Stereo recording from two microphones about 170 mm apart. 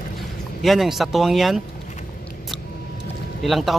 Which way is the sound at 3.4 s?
Centre (ahead or behind).